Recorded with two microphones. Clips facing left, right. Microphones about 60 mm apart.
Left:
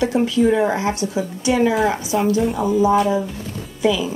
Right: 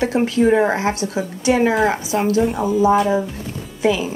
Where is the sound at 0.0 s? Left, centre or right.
Right.